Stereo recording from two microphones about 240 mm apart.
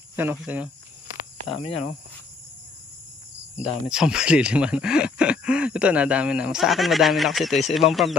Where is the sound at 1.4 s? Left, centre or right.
Left.